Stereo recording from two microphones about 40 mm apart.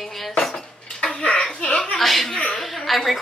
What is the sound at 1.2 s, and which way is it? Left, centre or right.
Speech, left.